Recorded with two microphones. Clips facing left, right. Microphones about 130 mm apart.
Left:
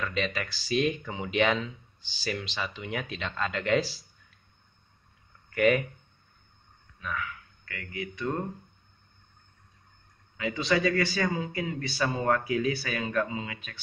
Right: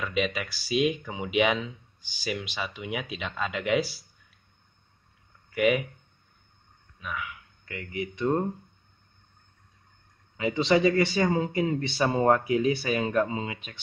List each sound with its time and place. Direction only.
0.0 s speech: 10° right (ahead or behind)
5.5 s speech: 5° right (ahead or behind)
7.0 s speech: 15° right (ahead or behind)
10.3 s a man's voice: 25° right (ahead or behind)